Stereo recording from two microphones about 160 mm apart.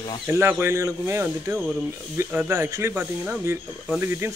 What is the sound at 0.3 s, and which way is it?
Speech, 15° right (ahead or behind).